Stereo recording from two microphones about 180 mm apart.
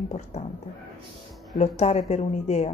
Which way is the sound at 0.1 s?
35° left (ahead or behind).